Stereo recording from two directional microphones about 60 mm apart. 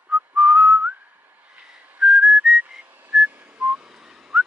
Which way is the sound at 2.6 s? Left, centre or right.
Right.